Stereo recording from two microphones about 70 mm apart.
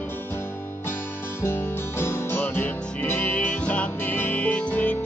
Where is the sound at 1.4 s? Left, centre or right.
Left.